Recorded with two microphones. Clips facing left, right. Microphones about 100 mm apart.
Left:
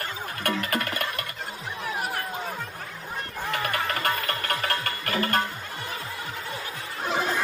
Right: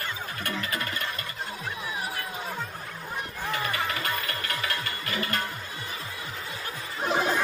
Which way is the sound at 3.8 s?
50° left (ahead or behind).